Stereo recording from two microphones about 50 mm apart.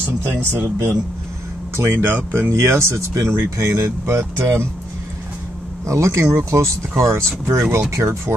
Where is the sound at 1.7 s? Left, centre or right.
Right.